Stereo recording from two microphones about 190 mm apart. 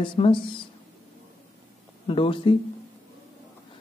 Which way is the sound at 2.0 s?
30° left (ahead or behind).